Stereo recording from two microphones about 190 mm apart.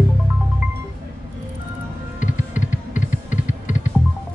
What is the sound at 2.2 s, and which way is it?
Music, 40° left (ahead or behind).